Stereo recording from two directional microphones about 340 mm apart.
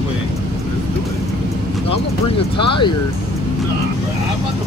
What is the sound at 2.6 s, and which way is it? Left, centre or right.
Speech, centre.